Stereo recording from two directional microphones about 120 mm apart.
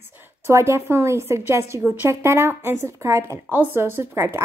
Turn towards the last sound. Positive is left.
turn(degrees=-20)  # may be behind; listen again after turning